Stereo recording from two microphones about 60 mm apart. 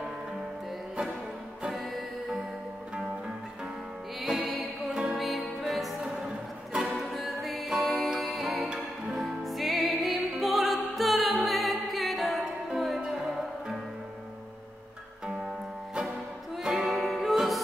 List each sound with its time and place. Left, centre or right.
5.1 s music: centre
8.5 s music: centre
9.4 s music: centre
16.6 s music: centre